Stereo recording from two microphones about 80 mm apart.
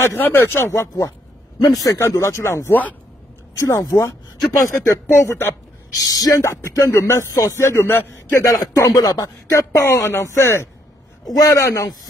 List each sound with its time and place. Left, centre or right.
0.0 s speech: left
1.9 s speech: left
6.0 s speech: left
6.6 s speech: left
8.4 s speech: left
11.2 s speech: left